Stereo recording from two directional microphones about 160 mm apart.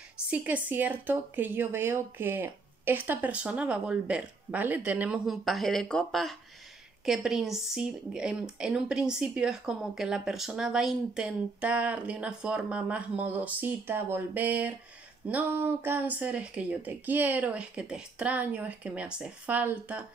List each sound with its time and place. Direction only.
0.3 s speech: 10° right (ahead or behind)